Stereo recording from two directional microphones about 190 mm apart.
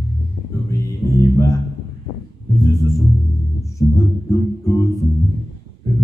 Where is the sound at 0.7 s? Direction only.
15° left (ahead or behind).